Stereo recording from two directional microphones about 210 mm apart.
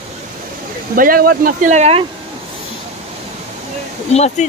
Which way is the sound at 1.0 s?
45° right (ahead or behind).